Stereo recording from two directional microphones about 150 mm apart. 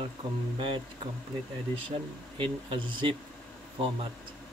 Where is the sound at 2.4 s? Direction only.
35° right (ahead or behind).